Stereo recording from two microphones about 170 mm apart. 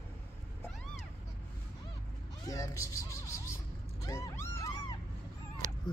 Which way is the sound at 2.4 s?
20° left (ahead or behind).